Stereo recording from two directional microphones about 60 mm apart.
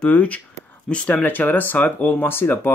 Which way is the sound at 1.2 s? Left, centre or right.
Left.